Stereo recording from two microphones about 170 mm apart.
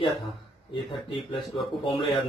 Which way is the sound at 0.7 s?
30° left (ahead or behind).